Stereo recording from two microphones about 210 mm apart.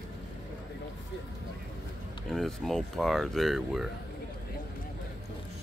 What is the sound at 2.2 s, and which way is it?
Speech, centre (ahead or behind).